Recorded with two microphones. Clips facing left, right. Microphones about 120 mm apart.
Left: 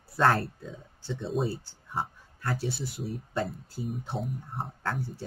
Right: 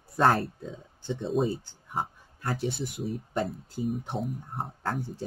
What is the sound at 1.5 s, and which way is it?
Speech, 20° right (ahead or behind).